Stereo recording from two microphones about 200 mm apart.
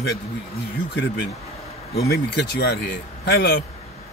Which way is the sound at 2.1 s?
50° left (ahead or behind).